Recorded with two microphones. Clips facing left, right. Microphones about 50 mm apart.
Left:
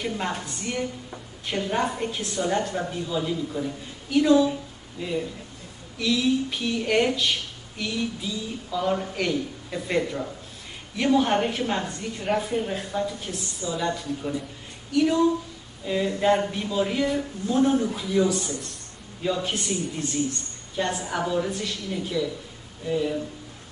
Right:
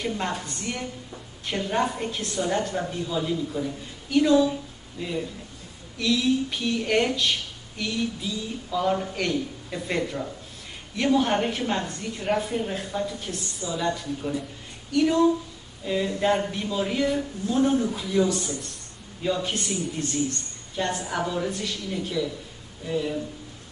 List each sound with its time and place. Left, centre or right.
0.4 s a woman's voice: centre
14.9 s speech: centre
15.8 s a sound: centre
16.2 s a woman's voice: centre
19.2 s a woman's voice: centre